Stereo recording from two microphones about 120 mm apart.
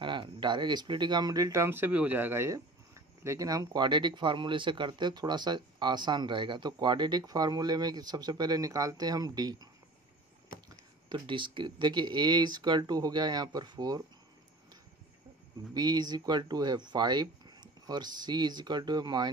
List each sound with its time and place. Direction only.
0.0 s speech: 40° right (ahead or behind)
11.1 s speech: 40° right (ahead or behind)
15.7 s speech: 35° right (ahead or behind)